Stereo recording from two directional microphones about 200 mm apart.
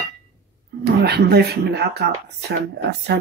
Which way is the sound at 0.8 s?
55° right (ahead or behind).